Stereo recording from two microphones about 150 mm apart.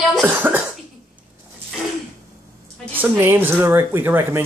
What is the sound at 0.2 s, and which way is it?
Cough, 10° right (ahead or behind).